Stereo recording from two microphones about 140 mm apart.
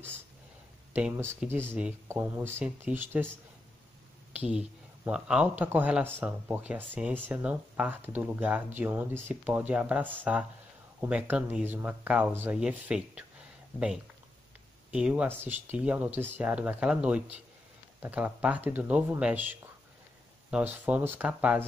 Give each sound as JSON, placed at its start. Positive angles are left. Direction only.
{"t": 0.9, "sound": "speech", "side_deg": -10}
{"t": 4.3, "sound": "speech", "side_deg": -10}
{"t": 14.9, "sound": "speech", "side_deg": -10}
{"t": 20.5, "sound": "speech", "side_deg": -10}